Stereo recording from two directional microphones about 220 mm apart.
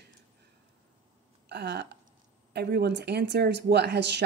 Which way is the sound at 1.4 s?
50° right (ahead or behind).